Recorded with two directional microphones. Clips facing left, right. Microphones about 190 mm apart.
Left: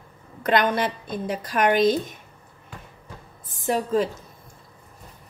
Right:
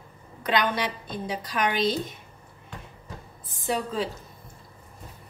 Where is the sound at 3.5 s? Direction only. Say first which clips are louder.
Left 6 dB; 45° left (ahead or behind).